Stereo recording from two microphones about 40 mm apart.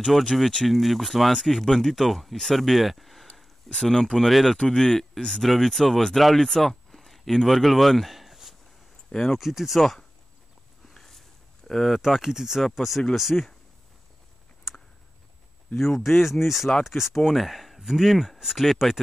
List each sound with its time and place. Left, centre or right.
0.1 s speech: centre
3.3 s a sound: centre
3.8 s speech: centre
4.1 s speech: centre
4.6 s speech: left; by 8.5 s centre
9.1 s speech: centre
9.4 s speech: centre
10.9 s a sound: centre
12.0 s speech: centre
12.6 s speech: centre
15.7 s speech: centre
16.0 s speech: centre